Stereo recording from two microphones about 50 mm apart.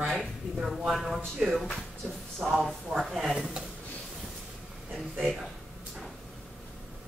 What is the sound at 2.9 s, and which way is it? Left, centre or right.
Speech, centre.